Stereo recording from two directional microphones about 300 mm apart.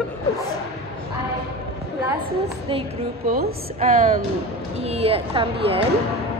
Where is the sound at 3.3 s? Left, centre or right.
Right.